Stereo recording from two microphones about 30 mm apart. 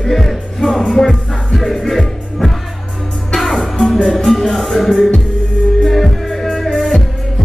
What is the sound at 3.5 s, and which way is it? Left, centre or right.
Music, centre.